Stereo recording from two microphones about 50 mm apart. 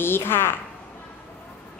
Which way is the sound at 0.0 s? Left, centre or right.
Left.